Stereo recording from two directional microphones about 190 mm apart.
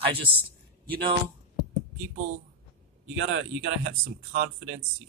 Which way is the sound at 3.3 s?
75° right (ahead or behind).